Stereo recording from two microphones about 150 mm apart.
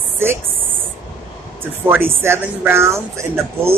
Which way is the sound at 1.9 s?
15° right (ahead or behind).